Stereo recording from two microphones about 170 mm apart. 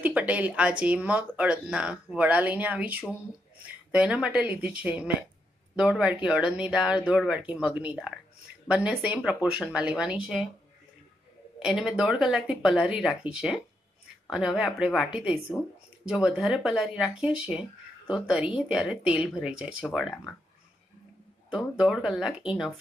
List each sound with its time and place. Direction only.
0.0 s speech: 10° right (ahead or behind)
11.7 s speech: centre (ahead or behind)
16.1 s speech: 5° right (ahead or behind)
21.5 s speech: 5° right (ahead or behind)